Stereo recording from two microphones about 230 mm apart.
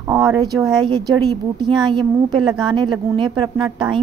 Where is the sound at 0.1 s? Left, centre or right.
Centre.